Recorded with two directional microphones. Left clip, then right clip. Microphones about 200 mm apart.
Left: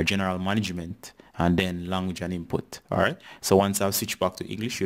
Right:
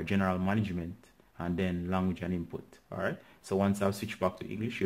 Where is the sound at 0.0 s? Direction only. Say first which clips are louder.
Left 6 dB; 40° left (ahead or behind).